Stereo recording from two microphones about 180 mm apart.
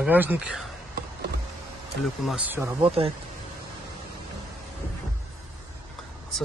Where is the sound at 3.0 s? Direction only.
35° right (ahead or behind).